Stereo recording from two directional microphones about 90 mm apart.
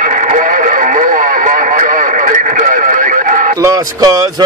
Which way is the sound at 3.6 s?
40° right (ahead or behind).